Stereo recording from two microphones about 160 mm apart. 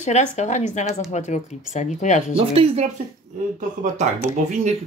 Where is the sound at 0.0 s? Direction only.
45° left (ahead or behind).